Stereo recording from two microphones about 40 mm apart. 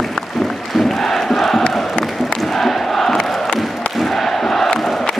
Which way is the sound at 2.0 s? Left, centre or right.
Centre.